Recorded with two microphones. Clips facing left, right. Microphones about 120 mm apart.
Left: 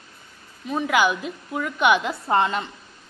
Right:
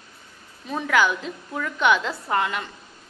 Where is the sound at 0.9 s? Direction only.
15° left (ahead or behind).